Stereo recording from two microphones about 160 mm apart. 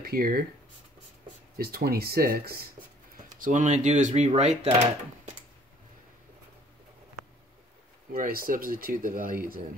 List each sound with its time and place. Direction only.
0.0 s speech: 70° right (ahead or behind)
1.6 s speech: 75° right (ahead or behind)
3.3 s speech: 55° right (ahead or behind)
8.1 s speech: 60° right (ahead or behind)